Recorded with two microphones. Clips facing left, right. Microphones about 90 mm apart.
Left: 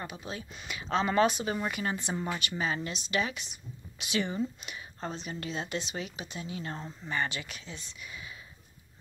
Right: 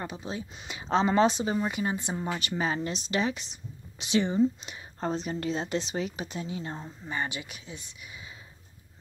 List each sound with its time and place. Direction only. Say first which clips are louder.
0.0 s speech: right 4 dB; 30° right (ahead or behind); by 2.2 s 15° right (ahead or behind)
2.3 s speech: right 3 dB; 35° right (ahead or behind)
6.7 s speech: even; 15° right (ahead or behind)